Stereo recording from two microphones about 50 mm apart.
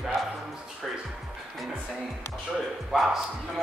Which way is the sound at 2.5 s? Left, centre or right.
Centre.